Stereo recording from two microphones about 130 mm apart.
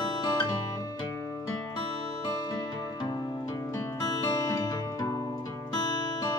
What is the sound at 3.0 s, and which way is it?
Music, 35° left (ahead or behind).